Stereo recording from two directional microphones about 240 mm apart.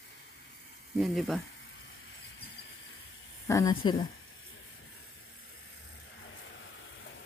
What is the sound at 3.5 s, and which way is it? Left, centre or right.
Speech, centre.